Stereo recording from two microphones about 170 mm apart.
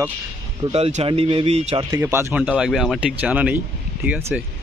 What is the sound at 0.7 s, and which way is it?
Speech, 35° right (ahead or behind).